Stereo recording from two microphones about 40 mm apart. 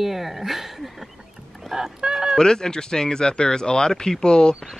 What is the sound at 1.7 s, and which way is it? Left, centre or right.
Fowl, centre.